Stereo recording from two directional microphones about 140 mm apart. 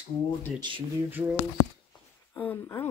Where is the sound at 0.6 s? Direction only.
35° right (ahead or behind).